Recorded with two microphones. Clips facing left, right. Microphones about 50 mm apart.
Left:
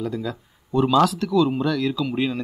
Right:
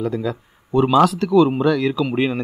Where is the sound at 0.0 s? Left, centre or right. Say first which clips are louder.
Right 5 dB; centre.